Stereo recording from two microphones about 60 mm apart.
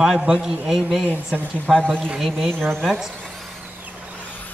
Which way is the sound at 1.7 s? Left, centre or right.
Centre.